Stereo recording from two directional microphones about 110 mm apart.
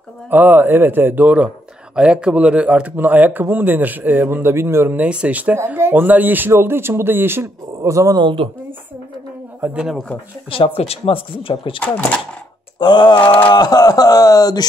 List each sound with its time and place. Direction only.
0.3 s speech: 15° right (ahead or behind)
8.2 s speech: 45° right (ahead or behind)
9.6 s speech: 5° right (ahead or behind)
10.5 s speech: 60° left (ahead or behind)
11.8 s speech: 15° left (ahead or behind)
12.7 s mantra: 45° left (ahead or behind)
13.5 s speech: 40° left (ahead or behind)